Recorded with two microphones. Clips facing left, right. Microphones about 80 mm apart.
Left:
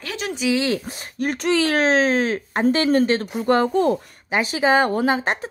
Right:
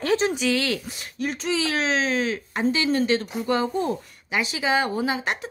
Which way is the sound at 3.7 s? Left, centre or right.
Left.